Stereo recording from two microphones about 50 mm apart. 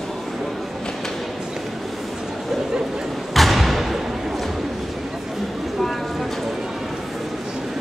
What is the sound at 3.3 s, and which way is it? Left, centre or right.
Thump, centre.